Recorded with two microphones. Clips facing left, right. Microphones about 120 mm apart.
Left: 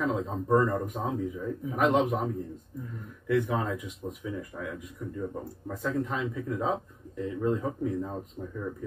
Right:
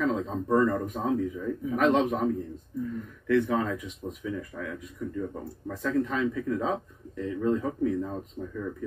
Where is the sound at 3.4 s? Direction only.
20° left (ahead or behind).